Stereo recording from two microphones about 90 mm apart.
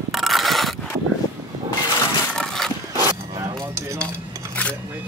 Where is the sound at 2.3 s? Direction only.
5° left (ahead or behind).